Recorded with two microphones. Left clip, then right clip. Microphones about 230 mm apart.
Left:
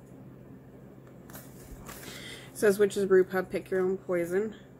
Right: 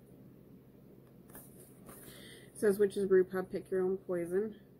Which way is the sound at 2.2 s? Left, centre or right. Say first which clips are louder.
Left 6 dB; centre.